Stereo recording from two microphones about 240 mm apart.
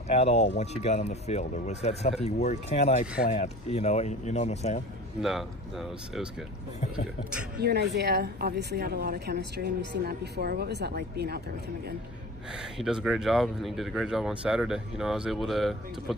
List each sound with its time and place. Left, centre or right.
0.1 s speech: left
7.5 s speech: right
12.7 s speech: centre